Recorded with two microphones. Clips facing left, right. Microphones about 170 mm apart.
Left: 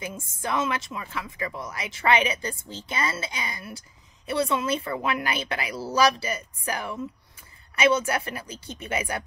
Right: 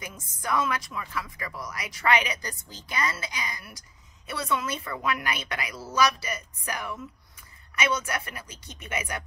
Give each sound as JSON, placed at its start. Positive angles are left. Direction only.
{"t": 0.0, "sound": "a woman's voice", "side_deg": 25}